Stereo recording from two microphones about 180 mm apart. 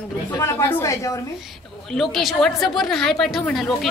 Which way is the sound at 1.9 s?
Centre (ahead or behind).